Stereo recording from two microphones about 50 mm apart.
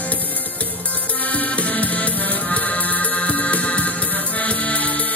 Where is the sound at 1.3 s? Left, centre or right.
Left.